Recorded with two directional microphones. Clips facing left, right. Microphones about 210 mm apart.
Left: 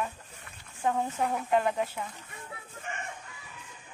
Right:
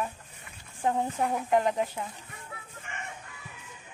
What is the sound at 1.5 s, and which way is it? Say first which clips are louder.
Speech: right 2 dB; 15° right (ahead or behind).